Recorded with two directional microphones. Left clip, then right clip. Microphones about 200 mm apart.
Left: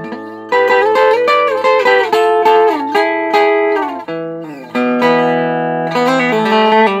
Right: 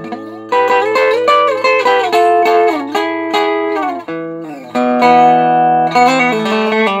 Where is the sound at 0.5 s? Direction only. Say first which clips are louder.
Left 1 dB; 40° left (ahead or behind).